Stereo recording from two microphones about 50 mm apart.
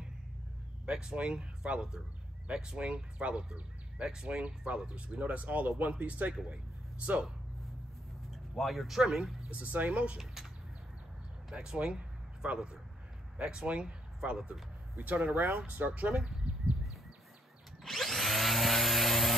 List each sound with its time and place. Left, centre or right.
0.8 s speech: centre
8.5 s speech: centre
9.5 s speech: right
11.5 s a sound: centre
13.4 s speech: centre
15.0 s speech: right
15.3 s speech: right
15.6 s speech: right
17.8 s drill: centre